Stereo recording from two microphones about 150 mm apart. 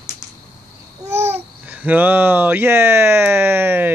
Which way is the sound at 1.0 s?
15° right (ahead or behind).